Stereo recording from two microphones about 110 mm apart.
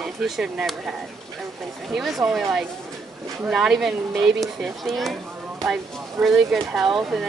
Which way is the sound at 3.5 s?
5° right (ahead or behind).